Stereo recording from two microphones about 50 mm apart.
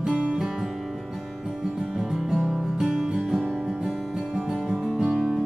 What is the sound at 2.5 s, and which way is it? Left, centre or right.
Music, centre.